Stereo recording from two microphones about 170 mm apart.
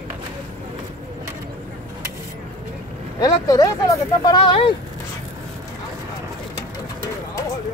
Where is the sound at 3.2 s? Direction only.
20° left (ahead or behind).